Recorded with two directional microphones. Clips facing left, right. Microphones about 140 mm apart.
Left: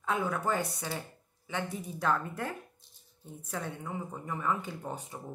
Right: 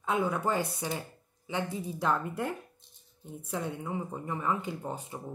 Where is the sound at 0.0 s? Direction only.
20° right (ahead or behind).